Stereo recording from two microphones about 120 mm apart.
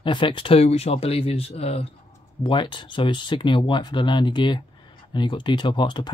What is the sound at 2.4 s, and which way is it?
Speech, 40° left (ahead or behind).